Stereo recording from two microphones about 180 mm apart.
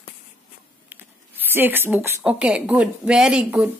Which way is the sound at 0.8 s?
10° right (ahead or behind).